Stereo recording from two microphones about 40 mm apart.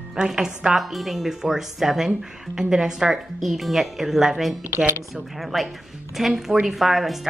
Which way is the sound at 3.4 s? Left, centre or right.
Centre.